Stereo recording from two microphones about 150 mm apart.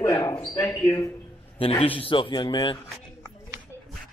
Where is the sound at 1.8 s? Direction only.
35° left (ahead or behind).